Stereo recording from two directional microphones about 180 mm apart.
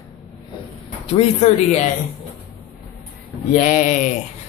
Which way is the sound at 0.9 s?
35° left (ahead or behind).